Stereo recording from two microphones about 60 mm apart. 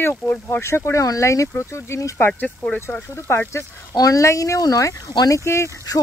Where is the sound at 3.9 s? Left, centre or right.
Left.